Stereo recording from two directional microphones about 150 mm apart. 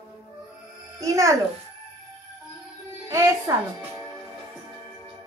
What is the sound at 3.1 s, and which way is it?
Speech, 25° right (ahead or behind).